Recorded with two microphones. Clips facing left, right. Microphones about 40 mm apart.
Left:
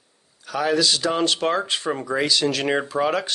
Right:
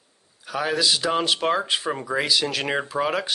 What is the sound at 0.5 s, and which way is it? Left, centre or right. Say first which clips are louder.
Speech: left 2 dB; centre.